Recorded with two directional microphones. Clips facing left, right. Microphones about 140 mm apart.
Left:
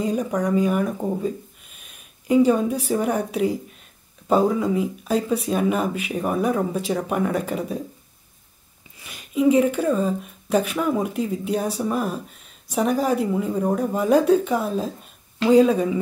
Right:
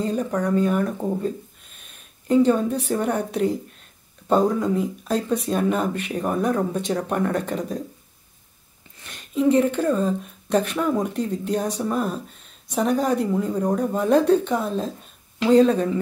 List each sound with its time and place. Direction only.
0.0 s speech: 10° left (ahead or behind)
8.9 s speech: 10° left (ahead or behind)